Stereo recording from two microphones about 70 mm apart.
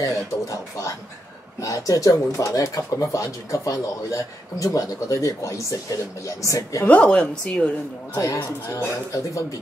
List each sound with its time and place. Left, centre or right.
0.0 s speech: left
6.9 s a woman's voice: centre
8.4 s speech: left